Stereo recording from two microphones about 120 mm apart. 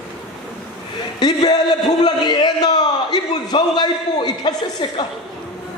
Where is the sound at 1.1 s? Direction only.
35° left (ahead or behind).